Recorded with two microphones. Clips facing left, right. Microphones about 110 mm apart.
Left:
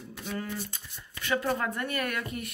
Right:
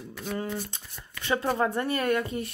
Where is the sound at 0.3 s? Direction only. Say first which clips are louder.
Right 3 dB; 25° right (ahead or behind).